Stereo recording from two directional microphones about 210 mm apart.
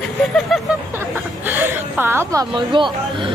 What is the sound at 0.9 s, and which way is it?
A woman's voice, 10° right (ahead or behind).